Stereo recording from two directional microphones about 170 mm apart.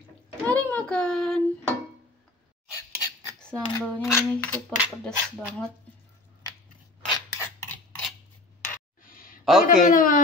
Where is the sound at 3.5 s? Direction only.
5° right (ahead or behind).